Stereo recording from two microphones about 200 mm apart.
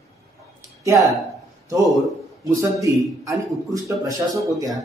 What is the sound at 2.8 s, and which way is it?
A man's voice, 15° right (ahead or behind).